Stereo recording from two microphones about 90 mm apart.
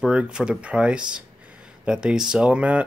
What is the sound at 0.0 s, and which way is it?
Speech, 10° right (ahead or behind).